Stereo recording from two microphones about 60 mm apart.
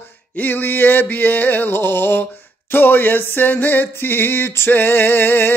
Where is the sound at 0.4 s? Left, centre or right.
Left.